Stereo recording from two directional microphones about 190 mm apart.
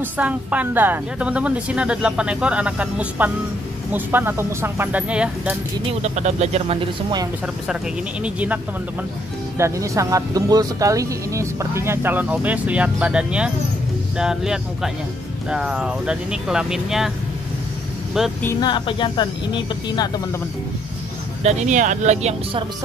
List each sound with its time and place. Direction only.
0.0 s speech: 5° right (ahead or behind)
5.9 s speech: 35° right (ahead or behind)
8.2 s speech: 10° right (ahead or behind)
9.6 s speech: 15° right (ahead or behind)
18.4 s speech: 20° left (ahead or behind)
21.4 s speech: 35° right (ahead or behind)